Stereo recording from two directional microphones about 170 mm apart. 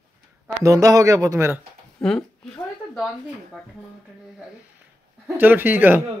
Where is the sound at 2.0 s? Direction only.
5° left (ahead or behind).